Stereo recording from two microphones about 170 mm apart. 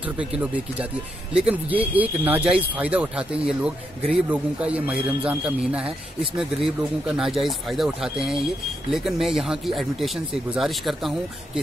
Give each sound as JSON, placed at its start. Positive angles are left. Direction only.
{"t": 0.0, "sound": "a man's voice", "side_deg": -10}